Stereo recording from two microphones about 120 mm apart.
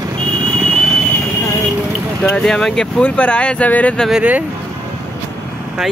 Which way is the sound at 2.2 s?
5° left (ahead or behind).